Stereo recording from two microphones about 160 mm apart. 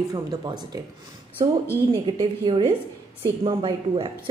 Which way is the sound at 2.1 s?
30° right (ahead or behind).